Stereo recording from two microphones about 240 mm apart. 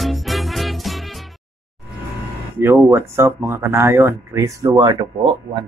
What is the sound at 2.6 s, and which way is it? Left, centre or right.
Speech, centre.